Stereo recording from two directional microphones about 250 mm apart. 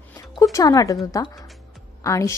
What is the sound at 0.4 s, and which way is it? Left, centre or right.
A woman's voice, centre.